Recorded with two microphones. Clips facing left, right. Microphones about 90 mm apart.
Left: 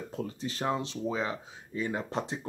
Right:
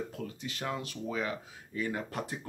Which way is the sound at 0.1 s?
30° left (ahead or behind).